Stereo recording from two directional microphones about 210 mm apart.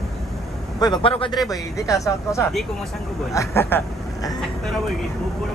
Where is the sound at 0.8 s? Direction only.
20° left (ahead or behind).